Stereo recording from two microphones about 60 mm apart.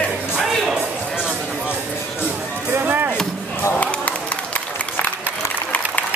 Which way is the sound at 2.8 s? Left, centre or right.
Right.